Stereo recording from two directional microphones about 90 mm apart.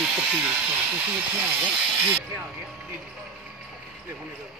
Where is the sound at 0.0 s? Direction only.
15° right (ahead or behind).